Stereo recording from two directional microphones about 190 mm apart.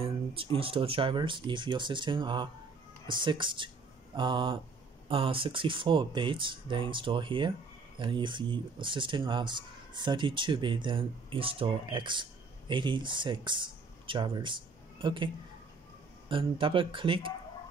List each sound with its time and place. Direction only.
0.0 s speech: 30° right (ahead or behind)
16.3 s speech: 25° right (ahead or behind)